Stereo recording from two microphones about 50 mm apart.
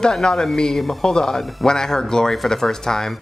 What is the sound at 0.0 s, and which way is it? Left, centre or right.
Speech, centre.